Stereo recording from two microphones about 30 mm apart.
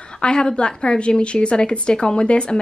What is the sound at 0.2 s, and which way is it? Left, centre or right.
A woman's voice, left.